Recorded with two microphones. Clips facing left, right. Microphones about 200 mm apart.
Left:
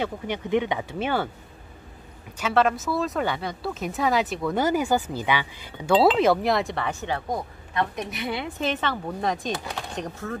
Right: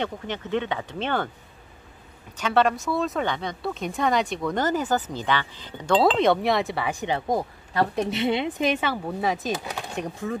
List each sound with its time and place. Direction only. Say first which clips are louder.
0.0 s speech: left 1 dB; 10° left (ahead or behind)
2.3 s speech: even; 5° left (ahead or behind); by 7.2 s 15° right (ahead or behind)
7.2 s a woman's voice: right 4 dB; 35° right (ahead or behind); by 10.3 s 10° right (ahead or behind)